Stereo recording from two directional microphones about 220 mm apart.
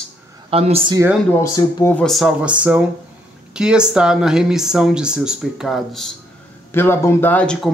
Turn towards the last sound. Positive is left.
turn(degrees=5)  # may be behind; listen again after turning